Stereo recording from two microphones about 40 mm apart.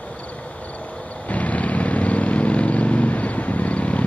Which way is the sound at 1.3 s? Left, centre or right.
Left.